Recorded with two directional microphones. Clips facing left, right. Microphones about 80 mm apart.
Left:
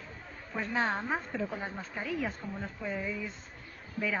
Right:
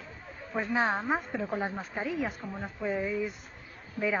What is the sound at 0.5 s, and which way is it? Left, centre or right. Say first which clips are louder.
Speech: right 4 dB; centre.